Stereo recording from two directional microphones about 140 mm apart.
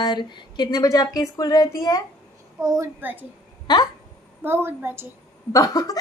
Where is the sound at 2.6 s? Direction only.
20° right (ahead or behind).